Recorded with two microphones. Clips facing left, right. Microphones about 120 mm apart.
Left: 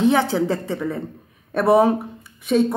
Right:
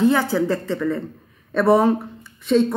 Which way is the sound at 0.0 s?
20° left (ahead or behind).